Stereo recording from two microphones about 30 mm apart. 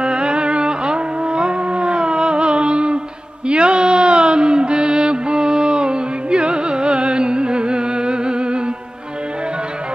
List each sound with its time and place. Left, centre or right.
0.0 s music: right